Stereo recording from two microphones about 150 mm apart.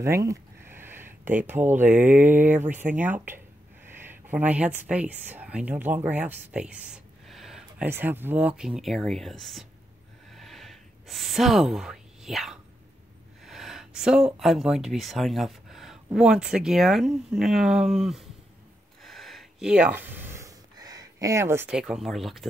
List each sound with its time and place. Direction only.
0.0 s speech: 20° right (ahead or behind); by 7.9 s 5° right (ahead or behind)
7.9 s speech: 15° right (ahead or behind); by 9.7 s centre (ahead or behind)
10.3 s a sound: centre (ahead or behind)
13.4 s speech: centre (ahead or behind)
19.0 s gasp: centre (ahead or behind); by 21.6 s 20° right (ahead or behind)
21.6 s speech: 5° right (ahead or behind)